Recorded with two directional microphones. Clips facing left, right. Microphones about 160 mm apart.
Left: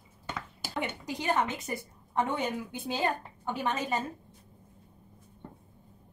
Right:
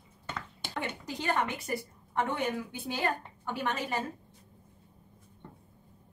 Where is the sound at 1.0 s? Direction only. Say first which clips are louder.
Left 1 dB; 15° left (ahead or behind).